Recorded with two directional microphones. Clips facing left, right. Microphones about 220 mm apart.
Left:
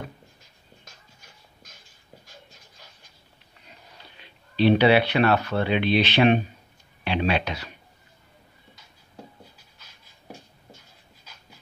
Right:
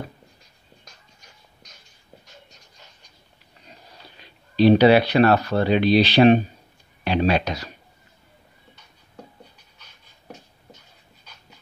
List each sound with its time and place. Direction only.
4.2 s speech: 40° right (ahead or behind)